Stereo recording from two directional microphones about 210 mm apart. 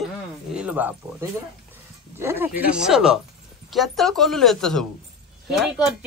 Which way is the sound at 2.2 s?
10° right (ahead or behind).